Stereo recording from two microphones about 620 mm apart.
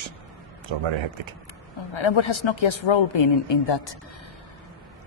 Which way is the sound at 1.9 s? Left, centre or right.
Left.